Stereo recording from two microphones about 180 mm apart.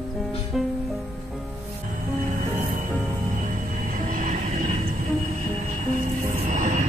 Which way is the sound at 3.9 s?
45° right (ahead or behind).